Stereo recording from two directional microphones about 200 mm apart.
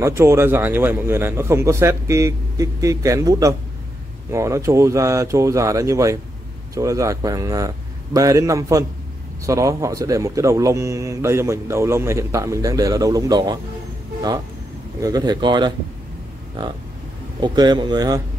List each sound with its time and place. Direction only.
0.0 s a man's voice: 15° right (ahead or behind)
15.0 s a man's voice: 20° right (ahead or behind)
17.4 s a man's voice: 20° right (ahead or behind)